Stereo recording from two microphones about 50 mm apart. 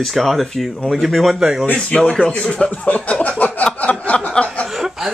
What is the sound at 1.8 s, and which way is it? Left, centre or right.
Speech, centre.